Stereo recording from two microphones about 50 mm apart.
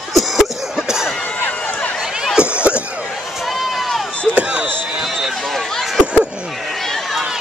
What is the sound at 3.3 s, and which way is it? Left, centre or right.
Run, centre.